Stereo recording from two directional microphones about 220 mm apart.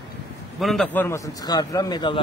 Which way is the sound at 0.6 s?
5° left (ahead or behind).